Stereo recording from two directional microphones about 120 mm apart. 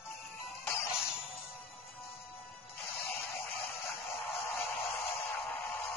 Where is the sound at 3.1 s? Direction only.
20° left (ahead or behind).